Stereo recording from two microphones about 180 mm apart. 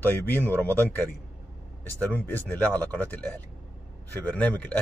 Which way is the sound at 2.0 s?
10° left (ahead or behind).